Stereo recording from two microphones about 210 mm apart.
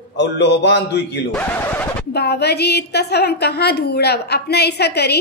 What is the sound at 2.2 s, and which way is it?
A woman's voice, 50° left (ahead or behind).